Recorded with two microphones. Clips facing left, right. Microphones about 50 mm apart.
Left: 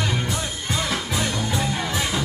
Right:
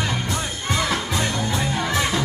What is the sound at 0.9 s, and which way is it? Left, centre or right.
Music, centre.